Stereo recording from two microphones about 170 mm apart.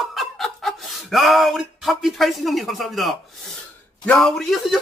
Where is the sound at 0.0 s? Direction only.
Centre (ahead or behind).